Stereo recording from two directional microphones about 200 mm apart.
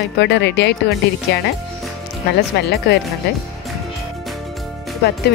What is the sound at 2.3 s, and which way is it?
Speech, 55° left (ahead or behind).